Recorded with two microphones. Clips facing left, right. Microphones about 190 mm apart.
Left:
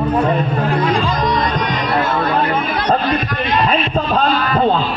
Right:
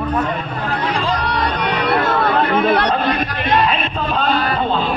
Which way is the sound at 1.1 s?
65° right (ahead or behind).